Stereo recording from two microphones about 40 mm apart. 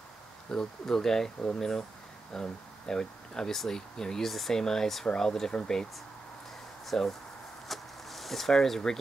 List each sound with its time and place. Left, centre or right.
0.5 s speech: centre
4.3 s speech: centre
4.6 s speech: centre
6.9 s speech: centre
7.6 s a sound: centre